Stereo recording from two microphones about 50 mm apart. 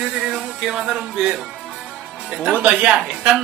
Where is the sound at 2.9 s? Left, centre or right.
Centre.